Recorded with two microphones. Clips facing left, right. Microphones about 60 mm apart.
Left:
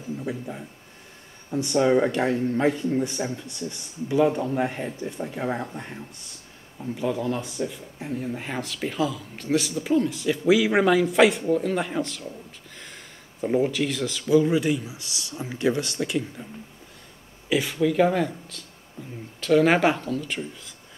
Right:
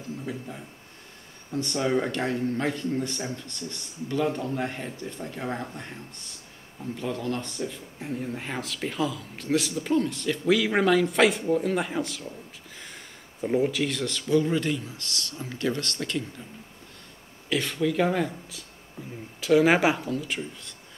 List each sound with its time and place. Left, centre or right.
0.2 s a man's voice: centre
17.5 s a man's voice: centre